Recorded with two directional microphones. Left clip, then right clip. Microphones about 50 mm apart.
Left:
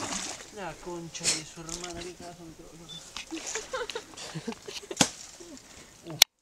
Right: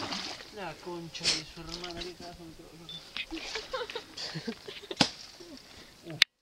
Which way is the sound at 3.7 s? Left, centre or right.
Left.